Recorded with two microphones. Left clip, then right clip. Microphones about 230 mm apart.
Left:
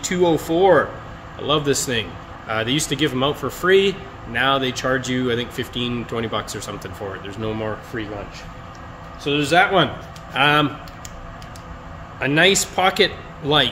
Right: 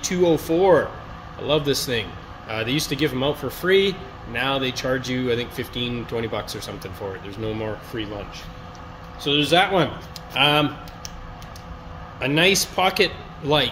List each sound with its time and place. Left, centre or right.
0.1 s speech: centre
9.2 s speech: centre
12.2 s speech: centre